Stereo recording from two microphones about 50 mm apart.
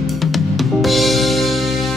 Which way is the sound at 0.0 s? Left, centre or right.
Centre.